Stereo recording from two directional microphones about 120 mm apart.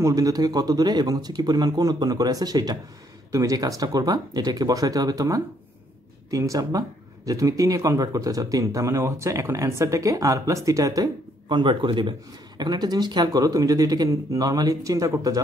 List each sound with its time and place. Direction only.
0.0 s speech: 30° right (ahead or behind)